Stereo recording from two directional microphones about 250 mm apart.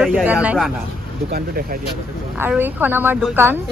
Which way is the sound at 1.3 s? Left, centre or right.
Right.